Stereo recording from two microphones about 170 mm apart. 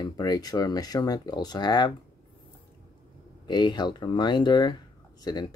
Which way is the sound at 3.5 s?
25° left (ahead or behind).